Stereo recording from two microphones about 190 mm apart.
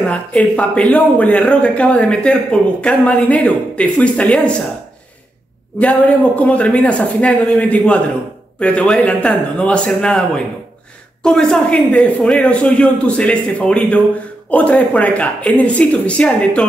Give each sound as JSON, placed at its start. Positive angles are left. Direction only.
{"t": 0.1, "sound": "speech", "side_deg": 5}
{"t": 5.8, "sound": "a man's voice", "side_deg": 5}